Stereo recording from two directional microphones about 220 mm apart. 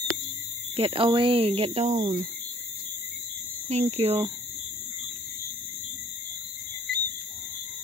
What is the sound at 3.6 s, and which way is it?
Speech, 30° right (ahead or behind).